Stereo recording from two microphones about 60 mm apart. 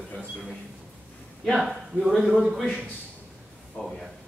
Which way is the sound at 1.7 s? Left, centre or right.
Centre.